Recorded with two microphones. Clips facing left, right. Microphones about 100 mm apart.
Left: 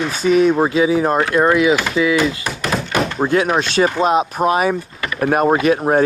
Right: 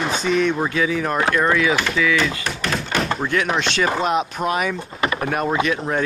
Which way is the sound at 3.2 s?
35° left (ahead or behind).